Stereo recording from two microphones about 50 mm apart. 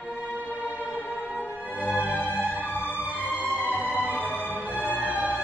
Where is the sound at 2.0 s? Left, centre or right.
Left.